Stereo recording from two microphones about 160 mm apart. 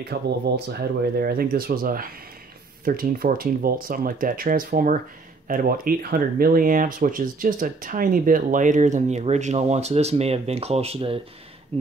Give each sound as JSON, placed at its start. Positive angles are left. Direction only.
{"t": 0.0, "sound": "speech", "side_deg": -85}